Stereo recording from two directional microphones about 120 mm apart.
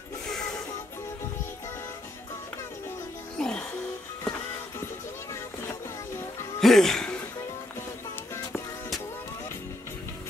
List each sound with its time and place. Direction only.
0.3 s music: 5° left (ahead or behind)
3.3 s music: 5° left (ahead or behind)
4.2 s music: 20° left (ahead or behind)
6.6 s music: 5° left (ahead or behind)